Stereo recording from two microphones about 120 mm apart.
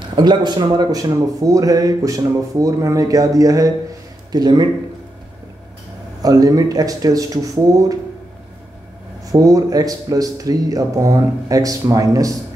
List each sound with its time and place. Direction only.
0.1 s speech: 40° right (ahead or behind)
6.2 s speech: 30° right (ahead or behind)
9.2 s speech: 30° right (ahead or behind)